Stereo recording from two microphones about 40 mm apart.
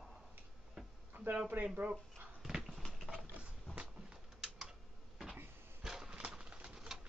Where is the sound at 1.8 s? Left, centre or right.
Right.